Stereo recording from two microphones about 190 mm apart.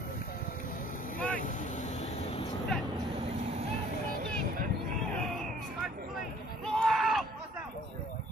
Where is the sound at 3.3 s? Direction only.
35° right (ahead or behind).